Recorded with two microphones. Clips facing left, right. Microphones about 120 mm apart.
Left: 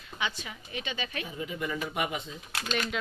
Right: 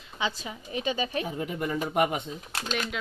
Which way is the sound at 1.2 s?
55° right (ahead or behind).